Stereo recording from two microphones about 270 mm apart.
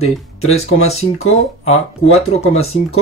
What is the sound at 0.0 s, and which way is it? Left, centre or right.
Speech, left.